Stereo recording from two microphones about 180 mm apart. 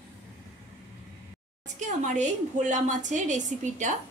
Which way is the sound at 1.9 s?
40° right (ahead or behind).